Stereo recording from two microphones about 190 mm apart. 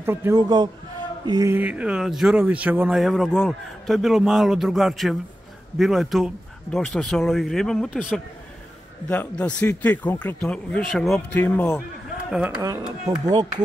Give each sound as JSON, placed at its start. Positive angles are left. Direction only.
{"t": 0.0, "sound": "a man's voice", "side_deg": -10}
{"t": 0.4, "sound": "speech", "side_deg": -25}
{"t": 9.0, "sound": "speech", "side_deg": 10}
{"t": 12.3, "sound": "speech", "side_deg": -5}
{"t": 13.3, "sound": "speech", "side_deg": -20}